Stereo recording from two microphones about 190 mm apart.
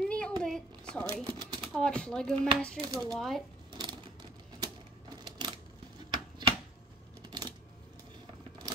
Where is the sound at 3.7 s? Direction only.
25° right (ahead or behind).